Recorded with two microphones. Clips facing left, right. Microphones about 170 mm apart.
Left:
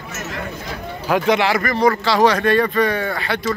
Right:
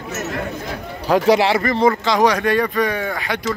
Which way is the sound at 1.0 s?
35° right (ahead or behind).